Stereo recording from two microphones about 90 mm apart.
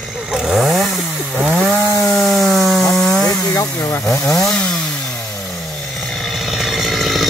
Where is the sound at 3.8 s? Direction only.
35° left (ahead or behind).